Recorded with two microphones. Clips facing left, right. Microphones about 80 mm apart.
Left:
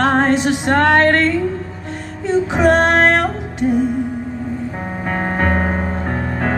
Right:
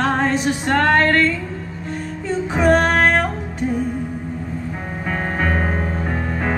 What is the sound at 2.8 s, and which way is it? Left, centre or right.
Music, left.